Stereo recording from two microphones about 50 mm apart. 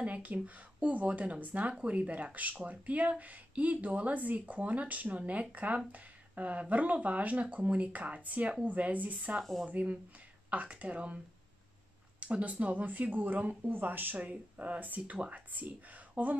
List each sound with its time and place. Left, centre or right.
0.0 s speech: right
9.4 s speech: centre
9.7 s speech: right
12.2 s speech: right